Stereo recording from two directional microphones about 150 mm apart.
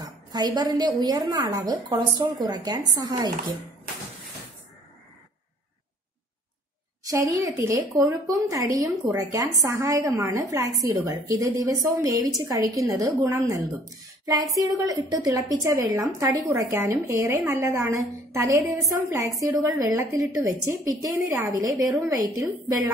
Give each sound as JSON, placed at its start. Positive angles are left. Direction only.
{"t": 0.0, "sound": "a woman's voice", "side_deg": -25}
{"t": 7.1, "sound": "a woman's voice", "side_deg": -20}